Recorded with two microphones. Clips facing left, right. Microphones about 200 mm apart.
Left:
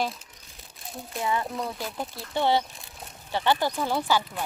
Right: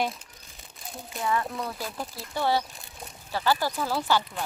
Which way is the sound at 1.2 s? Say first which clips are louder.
Even; 25° left (ahead or behind).